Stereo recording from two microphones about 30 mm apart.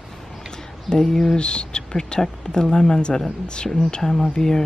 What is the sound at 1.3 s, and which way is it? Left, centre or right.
Speech, left.